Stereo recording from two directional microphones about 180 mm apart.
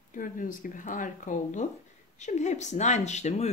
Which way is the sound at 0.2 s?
50° left (ahead or behind).